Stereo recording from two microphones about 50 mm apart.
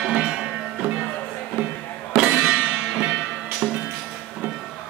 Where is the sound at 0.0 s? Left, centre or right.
Centre.